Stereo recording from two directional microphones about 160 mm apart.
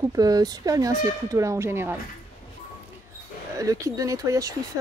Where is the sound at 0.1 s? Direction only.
25° right (ahead or behind).